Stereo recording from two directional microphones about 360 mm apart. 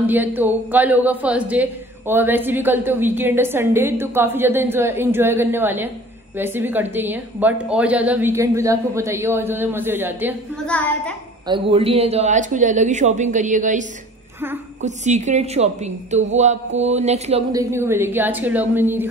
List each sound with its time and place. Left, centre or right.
0.0 s a man's voice: centre
11.4 s a woman's voice: centre